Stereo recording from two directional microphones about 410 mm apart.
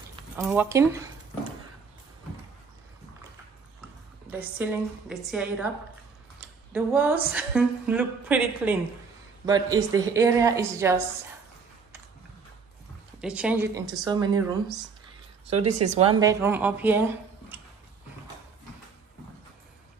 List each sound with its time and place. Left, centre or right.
0.4 s speech: centre
4.3 s a woman's voice: centre
6.7 s a woman's voice: centre
13.2 s a woman's voice: centre
15.5 s speech: right
16.1 s a woman's voice: centre